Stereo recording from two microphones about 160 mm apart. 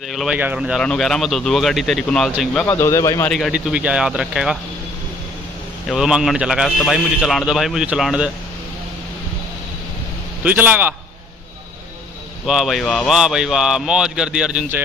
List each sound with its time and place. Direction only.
0.1 s a man's voice: centre (ahead or behind)
2.7 s speech: 15° left (ahead or behind)
3.3 s a man's voice: centre (ahead or behind)
5.9 s a man's voice: 5° right (ahead or behind)
10.4 s a man's voice: 10° right (ahead or behind)
12.4 s a man's voice: centre (ahead or behind)